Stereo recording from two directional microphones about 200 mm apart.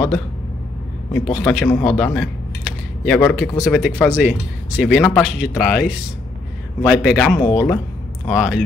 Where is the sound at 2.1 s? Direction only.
Centre (ahead or behind).